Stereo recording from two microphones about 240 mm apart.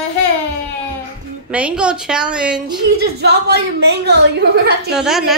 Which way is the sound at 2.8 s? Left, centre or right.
Right.